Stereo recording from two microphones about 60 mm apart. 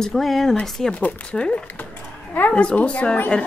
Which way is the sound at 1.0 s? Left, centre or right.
Left.